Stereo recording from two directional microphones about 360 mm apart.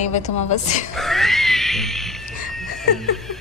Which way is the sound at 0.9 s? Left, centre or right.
Centre.